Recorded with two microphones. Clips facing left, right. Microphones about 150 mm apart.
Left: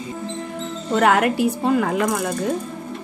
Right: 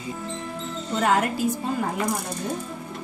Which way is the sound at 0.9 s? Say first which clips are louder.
Left 6 dB; 65° left (ahead or behind).